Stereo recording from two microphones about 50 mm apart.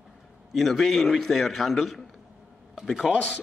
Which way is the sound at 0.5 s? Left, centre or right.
Centre.